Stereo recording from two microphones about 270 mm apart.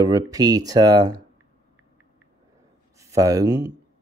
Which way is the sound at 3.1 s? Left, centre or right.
Centre.